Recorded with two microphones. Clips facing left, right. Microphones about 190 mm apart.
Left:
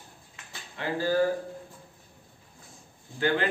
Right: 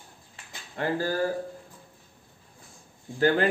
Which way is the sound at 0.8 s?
45° right (ahead or behind).